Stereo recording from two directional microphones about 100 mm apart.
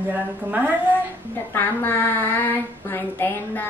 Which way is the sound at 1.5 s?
20° left (ahead or behind).